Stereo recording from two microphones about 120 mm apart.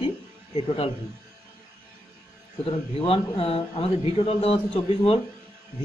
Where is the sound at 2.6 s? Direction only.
50° left (ahead or behind).